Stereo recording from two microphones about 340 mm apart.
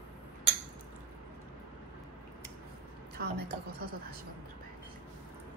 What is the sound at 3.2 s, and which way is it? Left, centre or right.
Speech, right.